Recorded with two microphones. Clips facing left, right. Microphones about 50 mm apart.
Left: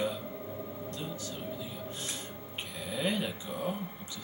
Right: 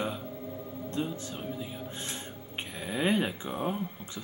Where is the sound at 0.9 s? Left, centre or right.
Right.